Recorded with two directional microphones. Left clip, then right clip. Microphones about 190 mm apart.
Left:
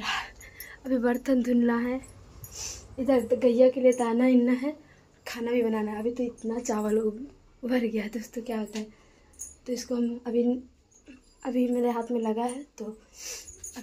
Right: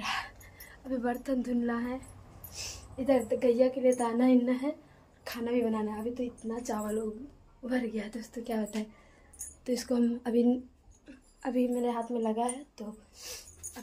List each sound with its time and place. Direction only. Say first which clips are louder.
0.0 s a sound: left 3 dB; 30° left (ahead or behind)
0.7 s a woman's voice: left 6 dB; 45° left (ahead or behind)
3.1 s a woman's voice: left 3 dB; 35° left (ahead or behind)
4.2 s a woman's voice: left 3 dB; 20° left (ahead or behind)
5.2 s a woman's voice: left 4 dB; 5° left (ahead or behind)
5.9 s a woman's voice: left 5 dB; 30° left (ahead or behind)
9.7 s speech: even; 25° right (ahead or behind)
11.1 s a sound: left 2 dB; 5° left (ahead or behind)
11.8 s a woman's voice: left 4 dB; 20° left (ahead or behind)